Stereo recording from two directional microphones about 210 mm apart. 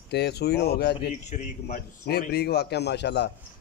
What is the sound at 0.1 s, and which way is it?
Speech, 50° left (ahead or behind).